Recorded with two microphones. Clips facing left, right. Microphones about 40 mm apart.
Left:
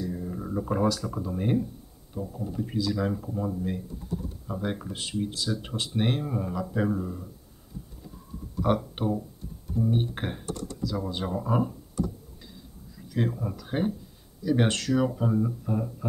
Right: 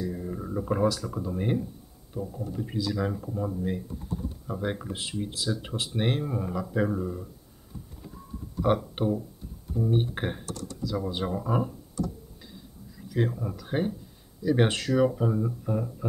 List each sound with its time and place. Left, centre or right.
0.0 s speech: centre
8.6 s speech: centre
10.4 s speech: left
10.8 s speech: centre
12.9 s speech: centre
15.1 s speech: centre